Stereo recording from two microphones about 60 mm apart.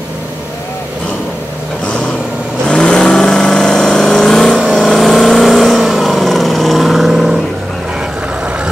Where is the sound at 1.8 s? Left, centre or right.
Centre.